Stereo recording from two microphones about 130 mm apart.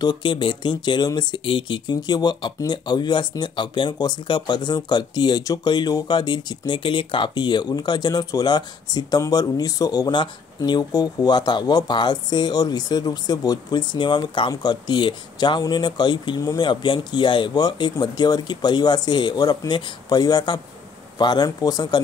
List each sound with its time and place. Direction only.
0.0 s speech: 35° left (ahead or behind)